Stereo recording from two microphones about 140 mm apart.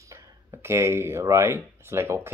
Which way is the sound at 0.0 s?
20° right (ahead or behind).